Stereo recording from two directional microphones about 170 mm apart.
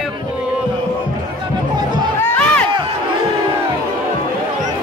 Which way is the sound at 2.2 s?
10° left (ahead or behind).